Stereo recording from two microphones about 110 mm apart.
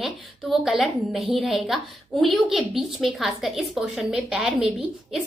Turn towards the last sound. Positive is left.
turn(degrees=-5)  # may be behind; listen again after turning